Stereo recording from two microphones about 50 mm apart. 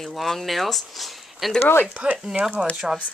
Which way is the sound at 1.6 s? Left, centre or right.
Left.